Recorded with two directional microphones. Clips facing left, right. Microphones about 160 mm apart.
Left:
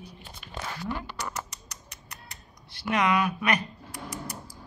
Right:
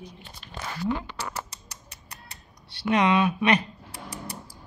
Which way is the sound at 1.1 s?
30° right (ahead or behind).